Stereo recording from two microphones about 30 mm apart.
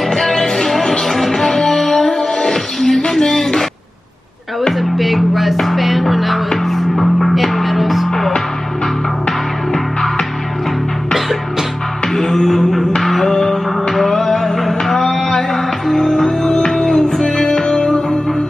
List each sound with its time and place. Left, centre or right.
0.3 s music: centre
3.1 s a sound: centre
4.7 s music: centre
12.1 s music: centre
14.9 s a sound: centre
15.5 s music: centre
16.3 s music: left
17.1 s music: centre